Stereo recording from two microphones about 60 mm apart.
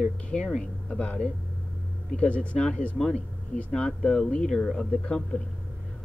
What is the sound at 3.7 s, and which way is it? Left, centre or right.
Speech, centre.